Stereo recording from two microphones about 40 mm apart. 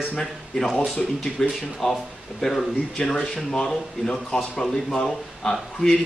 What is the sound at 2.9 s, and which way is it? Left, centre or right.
A man's voice, centre.